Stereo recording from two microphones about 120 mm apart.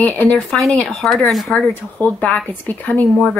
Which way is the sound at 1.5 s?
10° left (ahead or behind).